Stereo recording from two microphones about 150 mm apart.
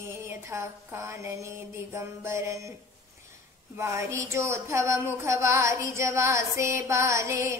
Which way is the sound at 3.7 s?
20° right (ahead or behind).